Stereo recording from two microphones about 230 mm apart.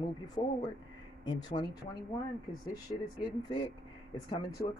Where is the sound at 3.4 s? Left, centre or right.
Centre.